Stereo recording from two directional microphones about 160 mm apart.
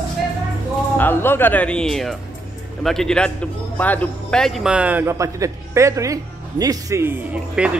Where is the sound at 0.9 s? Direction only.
15° left (ahead or behind).